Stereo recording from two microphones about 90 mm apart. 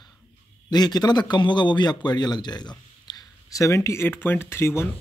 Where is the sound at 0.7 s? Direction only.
50° left (ahead or behind).